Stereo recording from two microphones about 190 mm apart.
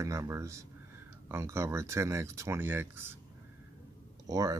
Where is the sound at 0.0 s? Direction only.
15° right (ahead or behind).